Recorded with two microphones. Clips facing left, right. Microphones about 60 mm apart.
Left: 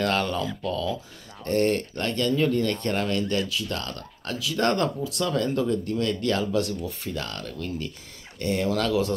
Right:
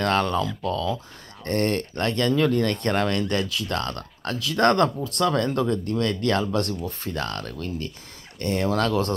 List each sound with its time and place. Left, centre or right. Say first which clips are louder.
0.0 s speech: right 3 dB; right
6.7 s speech: right 1 dB; right